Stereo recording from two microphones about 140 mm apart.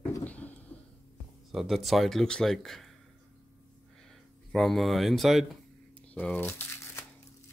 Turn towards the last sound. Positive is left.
turn(degrees=15)  # may be behind; listen again after turning